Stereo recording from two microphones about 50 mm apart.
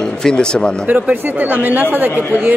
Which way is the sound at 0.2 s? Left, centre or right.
Centre.